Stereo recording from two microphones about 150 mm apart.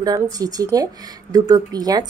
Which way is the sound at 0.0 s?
25° right (ahead or behind).